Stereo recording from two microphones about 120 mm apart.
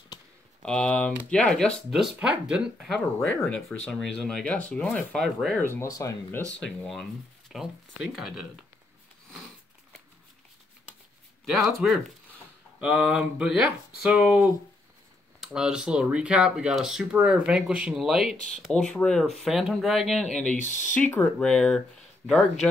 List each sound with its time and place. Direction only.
0.6 s speech: 10° left (ahead or behind)
5.8 s speech: 25° left (ahead or behind)
6.6 s speech: 5° left (ahead or behind)
11.4 s speech: centre (ahead or behind)
20.6 s speech: 90° left
20.9 s speech: 15° left (ahead or behind)